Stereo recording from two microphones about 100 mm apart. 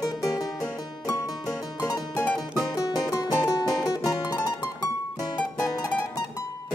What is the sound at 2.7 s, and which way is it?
Music, 40° left (ahead or behind).